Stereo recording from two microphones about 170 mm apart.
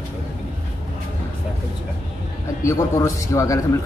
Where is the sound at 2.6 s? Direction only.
20° left (ahead or behind).